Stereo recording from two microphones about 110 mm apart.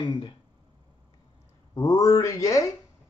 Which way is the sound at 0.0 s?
45° left (ahead or behind).